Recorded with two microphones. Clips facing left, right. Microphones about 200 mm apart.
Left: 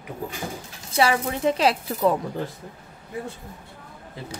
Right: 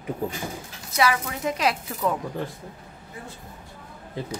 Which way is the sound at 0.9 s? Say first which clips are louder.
Left 2 dB; 30° left (ahead or behind).